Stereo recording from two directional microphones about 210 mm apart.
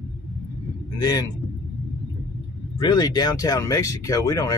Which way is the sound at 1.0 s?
20° left (ahead or behind).